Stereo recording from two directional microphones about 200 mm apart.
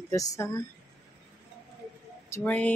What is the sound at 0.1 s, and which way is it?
Speech, 15° left (ahead or behind).